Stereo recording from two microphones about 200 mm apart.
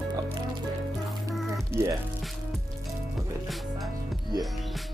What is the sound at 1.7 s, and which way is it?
Speech, 10° right (ahead or behind).